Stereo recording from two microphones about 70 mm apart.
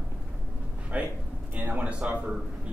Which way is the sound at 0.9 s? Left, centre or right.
Right.